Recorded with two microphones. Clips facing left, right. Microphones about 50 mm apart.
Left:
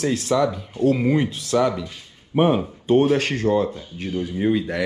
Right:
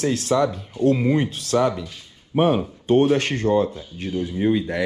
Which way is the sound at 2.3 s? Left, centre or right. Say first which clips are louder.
Even; left.